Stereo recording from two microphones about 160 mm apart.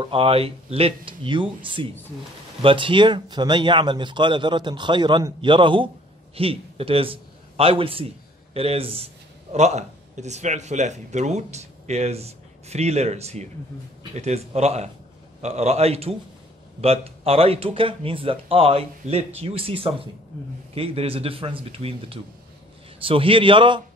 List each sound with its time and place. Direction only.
0.0 s a man's voice: 35° right (ahead or behind)